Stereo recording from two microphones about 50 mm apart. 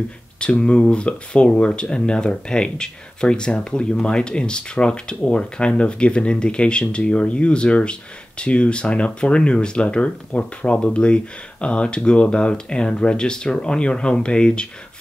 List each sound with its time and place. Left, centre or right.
0.4 s speech: left